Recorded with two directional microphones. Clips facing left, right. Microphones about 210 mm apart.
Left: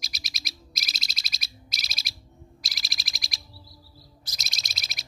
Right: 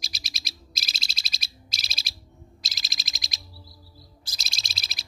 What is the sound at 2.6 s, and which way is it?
Owl, 20° right (ahead or behind).